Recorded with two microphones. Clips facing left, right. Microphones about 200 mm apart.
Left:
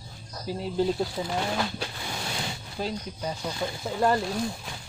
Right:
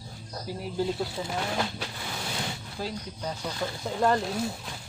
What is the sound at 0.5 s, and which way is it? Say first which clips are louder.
Speech: left 4 dB; 25° left (ahead or behind).